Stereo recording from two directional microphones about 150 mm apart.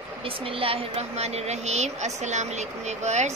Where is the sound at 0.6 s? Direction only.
40° right (ahead or behind).